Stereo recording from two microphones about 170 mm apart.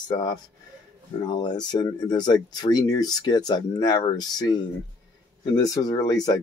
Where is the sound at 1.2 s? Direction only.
25° left (ahead or behind).